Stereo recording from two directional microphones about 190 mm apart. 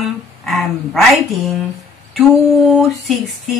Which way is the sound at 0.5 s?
Centre (ahead or behind).